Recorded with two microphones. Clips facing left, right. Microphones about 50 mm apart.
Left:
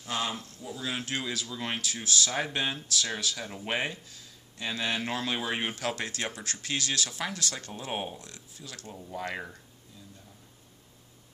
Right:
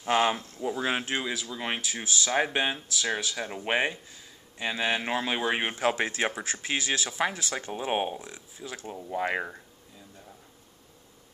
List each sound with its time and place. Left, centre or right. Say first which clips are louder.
0.0 s speech: right 8 dB; right
1.0 s speech: right 3 dB; centre
8.2 s speech: right 5 dB; centre